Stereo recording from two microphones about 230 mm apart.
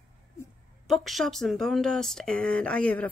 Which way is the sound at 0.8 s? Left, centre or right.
Centre.